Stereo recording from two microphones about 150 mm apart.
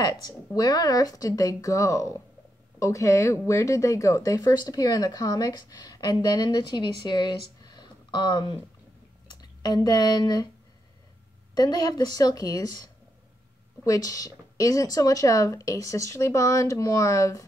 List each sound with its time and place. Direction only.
0.0 s speech: 25° left (ahead or behind)
11.5 s speech: 25° left (ahead or behind)